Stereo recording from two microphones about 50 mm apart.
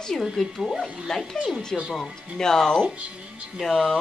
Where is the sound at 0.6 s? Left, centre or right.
Centre.